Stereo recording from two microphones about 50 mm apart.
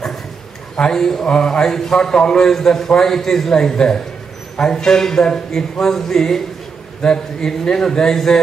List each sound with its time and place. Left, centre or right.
0.7 s a man's voice: centre